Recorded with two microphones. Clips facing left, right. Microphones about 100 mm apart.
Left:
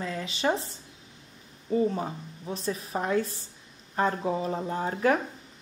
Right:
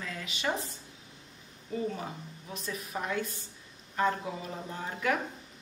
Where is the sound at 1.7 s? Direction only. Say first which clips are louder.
Left 8 dB; 30° left (ahead or behind).